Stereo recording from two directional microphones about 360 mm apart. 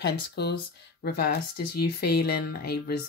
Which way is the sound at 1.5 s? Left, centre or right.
Left.